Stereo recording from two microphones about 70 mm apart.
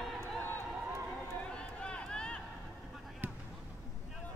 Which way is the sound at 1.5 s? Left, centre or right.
Centre.